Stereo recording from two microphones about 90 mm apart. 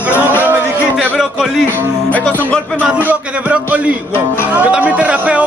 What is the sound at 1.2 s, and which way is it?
Speech, 5° right (ahead or behind).